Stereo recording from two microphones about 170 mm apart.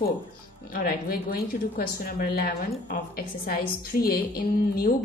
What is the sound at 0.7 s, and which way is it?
A woman's voice, 65° left (ahead or behind).